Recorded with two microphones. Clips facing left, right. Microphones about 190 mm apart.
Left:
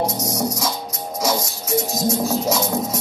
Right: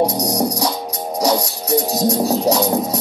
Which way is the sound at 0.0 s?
35° right (ahead or behind).